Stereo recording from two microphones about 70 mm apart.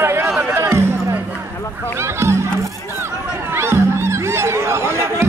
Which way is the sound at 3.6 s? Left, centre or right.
Right.